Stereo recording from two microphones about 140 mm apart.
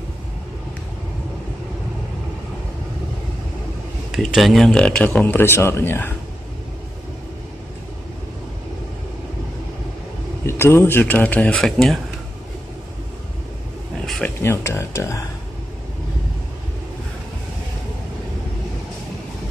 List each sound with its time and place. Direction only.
4.1 s speech: centre (ahead or behind); by 6.1 s 15° left (ahead or behind)
10.4 s speech: 15° left (ahead or behind)
14.0 s a sound: 5° left (ahead or behind)
14.4 s speech: 20° left (ahead or behind)